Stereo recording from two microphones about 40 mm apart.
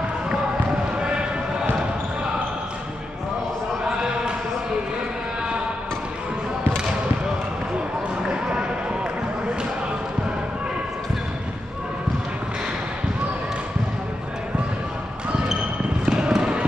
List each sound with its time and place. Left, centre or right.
8.3 s basketball bounce: right
16.1 s basketball bounce: centre